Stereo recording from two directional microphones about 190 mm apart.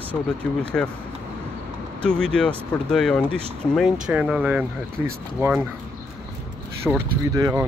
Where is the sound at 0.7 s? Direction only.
Centre (ahead or behind).